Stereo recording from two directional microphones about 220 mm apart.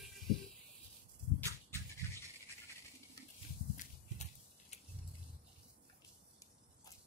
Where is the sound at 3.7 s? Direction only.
30° left (ahead or behind).